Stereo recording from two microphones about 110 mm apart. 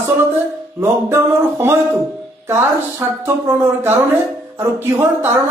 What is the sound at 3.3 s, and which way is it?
Speech, 20° right (ahead or behind).